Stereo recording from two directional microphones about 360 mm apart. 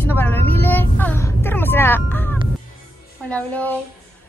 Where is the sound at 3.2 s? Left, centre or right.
Centre.